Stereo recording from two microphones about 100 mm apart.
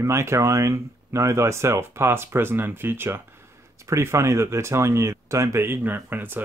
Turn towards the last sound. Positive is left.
turn(degrees=-20)  # may be behind; listen again after turning